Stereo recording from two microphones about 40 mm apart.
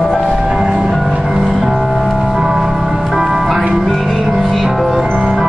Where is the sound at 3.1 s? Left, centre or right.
Centre.